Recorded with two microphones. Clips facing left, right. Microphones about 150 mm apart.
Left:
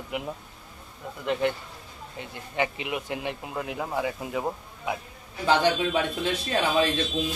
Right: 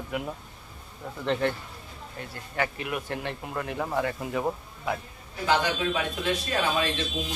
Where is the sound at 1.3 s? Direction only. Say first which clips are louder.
Left 1 dB; 15° left (ahead or behind).